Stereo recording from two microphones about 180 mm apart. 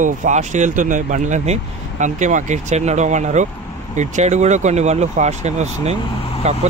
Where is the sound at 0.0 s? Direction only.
45° right (ahead or behind).